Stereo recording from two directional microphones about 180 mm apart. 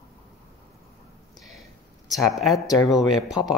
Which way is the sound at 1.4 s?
Centre (ahead or behind).